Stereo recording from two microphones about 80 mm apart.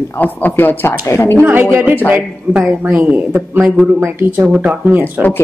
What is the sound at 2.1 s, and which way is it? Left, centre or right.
Speech, centre.